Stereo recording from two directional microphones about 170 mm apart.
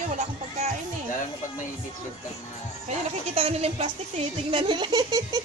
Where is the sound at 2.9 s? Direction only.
35° right (ahead or behind).